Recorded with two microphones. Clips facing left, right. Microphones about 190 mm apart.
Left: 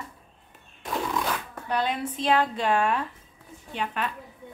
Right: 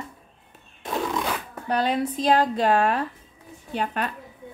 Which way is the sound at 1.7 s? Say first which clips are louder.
Right 4 dB; 40° right (ahead or behind).